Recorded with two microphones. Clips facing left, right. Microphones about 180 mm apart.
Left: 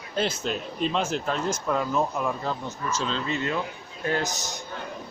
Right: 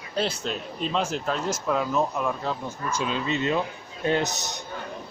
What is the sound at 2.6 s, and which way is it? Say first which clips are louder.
Speech: right 1 dB; 10° right (ahead or behind).